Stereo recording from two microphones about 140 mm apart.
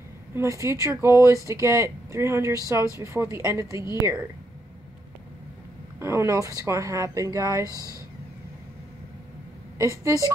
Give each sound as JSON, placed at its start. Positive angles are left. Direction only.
{"t": 0.3, "sound": "speech", "side_deg": -20}
{"t": 5.9, "sound": "speech", "side_deg": -20}
{"t": 9.8, "sound": "speech", "side_deg": -20}